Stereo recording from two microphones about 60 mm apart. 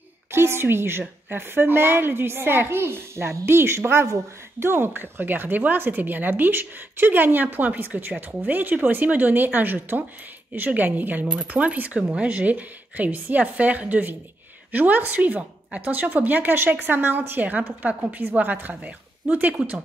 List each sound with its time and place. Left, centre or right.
0.3 s a woman's voice: right